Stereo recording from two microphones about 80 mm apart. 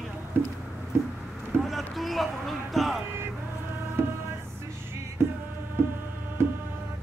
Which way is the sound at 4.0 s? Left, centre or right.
Right.